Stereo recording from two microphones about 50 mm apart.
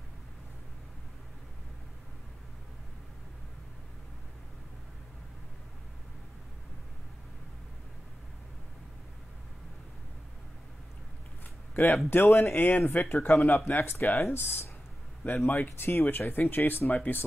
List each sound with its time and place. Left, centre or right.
11.7 s speech: left
13.7 s speech: left
15.2 s speech: left